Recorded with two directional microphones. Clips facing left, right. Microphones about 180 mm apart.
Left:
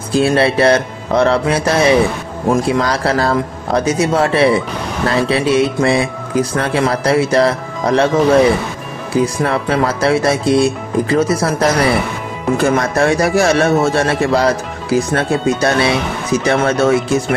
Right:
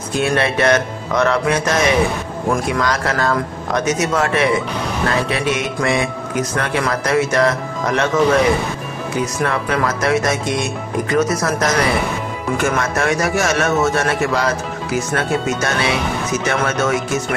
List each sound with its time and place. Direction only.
0.1 s speech: 30° left (ahead or behind)